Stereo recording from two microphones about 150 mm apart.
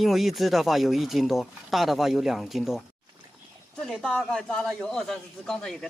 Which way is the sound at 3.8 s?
5° left (ahead or behind).